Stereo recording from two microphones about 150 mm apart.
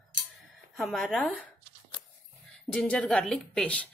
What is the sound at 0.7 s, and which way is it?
Speech, centre (ahead or behind).